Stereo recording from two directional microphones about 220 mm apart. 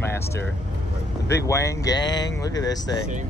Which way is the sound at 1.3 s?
15° left (ahead or behind).